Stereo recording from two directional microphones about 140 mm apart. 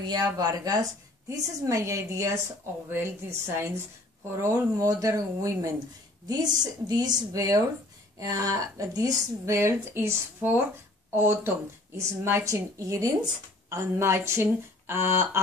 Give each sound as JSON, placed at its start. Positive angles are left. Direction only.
{"t": 0.0, "sound": "a woman's voice", "side_deg": -30}